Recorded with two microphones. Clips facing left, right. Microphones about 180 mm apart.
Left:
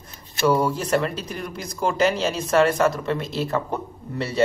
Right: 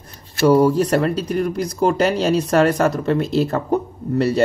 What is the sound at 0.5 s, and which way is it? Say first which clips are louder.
Speech: right 6 dB; 35° right (ahead or behind).